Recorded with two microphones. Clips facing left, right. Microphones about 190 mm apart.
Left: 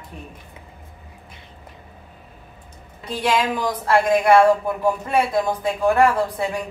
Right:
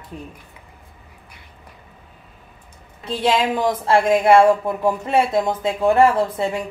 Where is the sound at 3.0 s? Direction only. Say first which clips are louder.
Right 2 dB; 25° right (ahead or behind).